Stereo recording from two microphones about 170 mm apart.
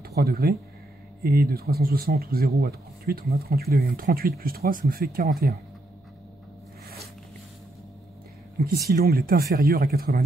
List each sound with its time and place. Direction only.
0.0 s speech: 65° right (ahead or behind)
8.8 s speech: 70° right (ahead or behind)